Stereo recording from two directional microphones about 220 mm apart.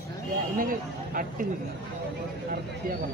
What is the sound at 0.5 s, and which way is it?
Speech, 40° right (ahead or behind).